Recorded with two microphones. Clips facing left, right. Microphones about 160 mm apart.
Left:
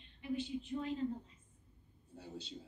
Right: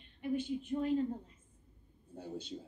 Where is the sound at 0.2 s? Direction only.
50° right (ahead or behind).